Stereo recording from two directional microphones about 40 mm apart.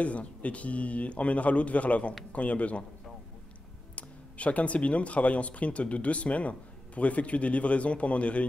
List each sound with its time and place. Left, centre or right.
0.0 s speech: left
3.9 s speech: left